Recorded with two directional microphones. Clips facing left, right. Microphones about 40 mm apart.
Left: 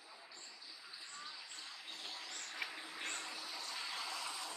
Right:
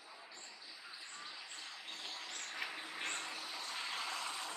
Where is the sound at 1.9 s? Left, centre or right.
Right.